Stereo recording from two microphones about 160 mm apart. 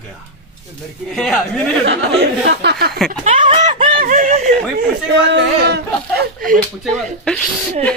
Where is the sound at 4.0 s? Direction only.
55° right (ahead or behind).